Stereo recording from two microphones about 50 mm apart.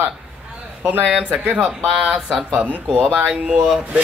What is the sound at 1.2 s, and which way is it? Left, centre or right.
Speech, right.